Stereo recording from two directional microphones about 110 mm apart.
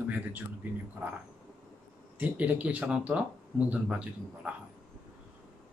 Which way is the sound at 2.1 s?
15° right (ahead or behind).